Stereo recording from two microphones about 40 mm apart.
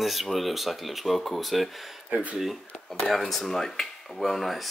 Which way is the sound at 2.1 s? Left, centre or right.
Right.